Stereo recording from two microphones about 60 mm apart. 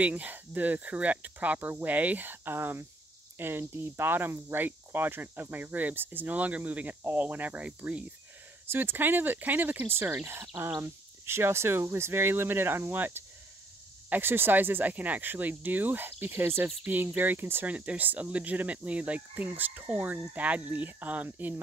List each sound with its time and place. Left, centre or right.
0.0 s speech: right
8.6 s speech: right
10.3 s speech: right
17.6 s speech: right